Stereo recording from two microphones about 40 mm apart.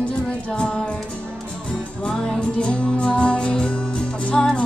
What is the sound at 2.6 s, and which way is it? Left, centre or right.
Music, left.